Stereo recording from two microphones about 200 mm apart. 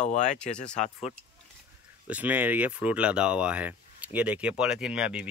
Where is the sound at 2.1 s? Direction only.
10° right (ahead or behind).